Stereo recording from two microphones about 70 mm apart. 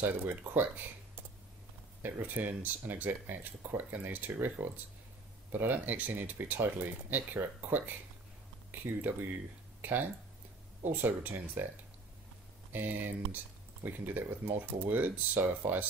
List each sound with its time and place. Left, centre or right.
0.0 s speech: right
2.0 s speech: right
9.8 s a sound: right
10.9 s speech: right
12.7 s speech: right